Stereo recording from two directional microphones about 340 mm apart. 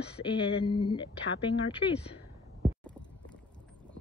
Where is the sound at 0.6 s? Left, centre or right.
Centre.